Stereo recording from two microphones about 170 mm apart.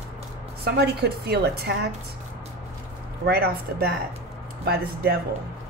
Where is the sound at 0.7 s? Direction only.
75° right (ahead or behind).